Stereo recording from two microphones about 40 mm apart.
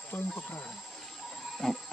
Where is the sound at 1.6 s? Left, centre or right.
Centre.